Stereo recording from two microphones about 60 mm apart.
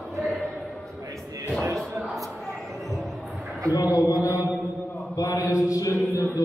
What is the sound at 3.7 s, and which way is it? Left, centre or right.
Speech, left.